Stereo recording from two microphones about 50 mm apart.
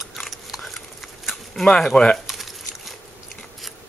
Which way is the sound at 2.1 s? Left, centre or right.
Centre.